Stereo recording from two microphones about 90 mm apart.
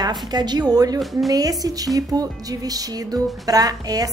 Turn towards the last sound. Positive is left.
turn(degrees=-45)  # may be behind; listen again after turning